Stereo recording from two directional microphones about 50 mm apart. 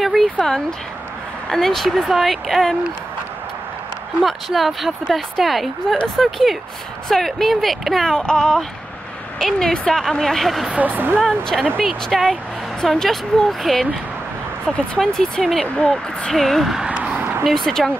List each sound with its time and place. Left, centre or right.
0.0 s a sound: centre
0.4 s speech: centre
1.9 s a woman's voice: centre
4.2 s a woman's voice: centre
10.7 s speech: right
11.1 s a woman's voice: centre
15.0 s speech: centre
17.2 s vehicle: right
17.5 s speech: centre